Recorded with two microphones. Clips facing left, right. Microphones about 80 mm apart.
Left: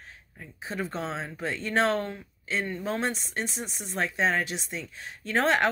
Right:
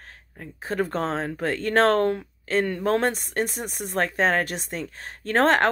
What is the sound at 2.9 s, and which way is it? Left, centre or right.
A woman's voice, right.